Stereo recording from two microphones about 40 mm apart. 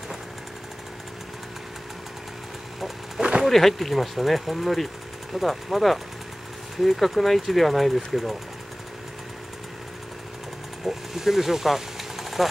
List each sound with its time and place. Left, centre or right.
3.2 s a sound: right
3.4 s speech: centre
10.9 s speech: centre